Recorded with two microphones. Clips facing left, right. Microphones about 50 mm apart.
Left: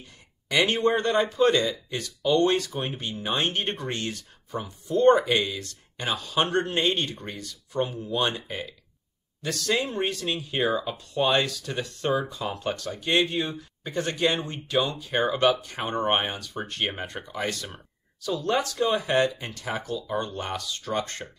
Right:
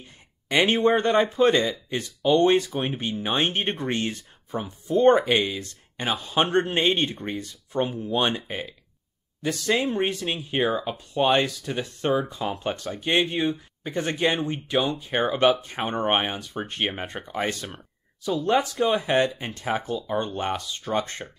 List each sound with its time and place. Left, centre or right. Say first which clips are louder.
0.0 s speech: right 1 dB; right
19.0 s speech: right 1 dB; right